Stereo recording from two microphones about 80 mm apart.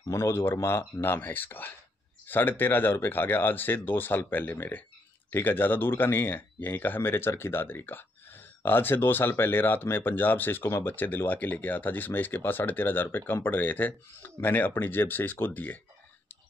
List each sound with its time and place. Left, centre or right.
0.1 s speech: left